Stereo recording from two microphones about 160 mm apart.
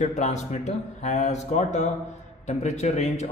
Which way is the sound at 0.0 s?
45° left (ahead or behind).